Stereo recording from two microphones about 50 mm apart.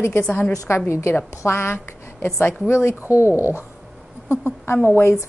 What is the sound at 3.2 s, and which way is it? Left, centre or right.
Speech, left.